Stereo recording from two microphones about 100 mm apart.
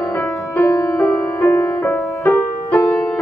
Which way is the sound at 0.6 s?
35° left (ahead or behind).